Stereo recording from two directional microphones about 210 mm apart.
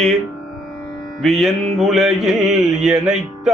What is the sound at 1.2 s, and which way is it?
Music, centre (ahead or behind).